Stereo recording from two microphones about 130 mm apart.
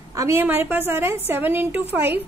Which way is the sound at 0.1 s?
20° right (ahead or behind).